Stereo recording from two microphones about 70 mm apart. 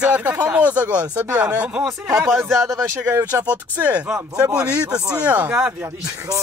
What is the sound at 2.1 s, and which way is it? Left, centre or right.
Speech, right.